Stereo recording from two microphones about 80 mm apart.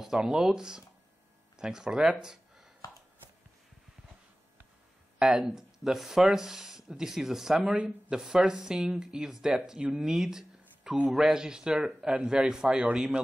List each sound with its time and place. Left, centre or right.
0.0 s speech: centre
2.2 s a sound: centre
5.2 s speech: centre
7.7 s speech: centre
8.2 s speech: centre
10.6 s a sound: centre
11.1 s speech: centre